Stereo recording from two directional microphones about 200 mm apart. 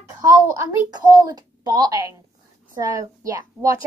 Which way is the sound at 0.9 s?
20° right (ahead or behind).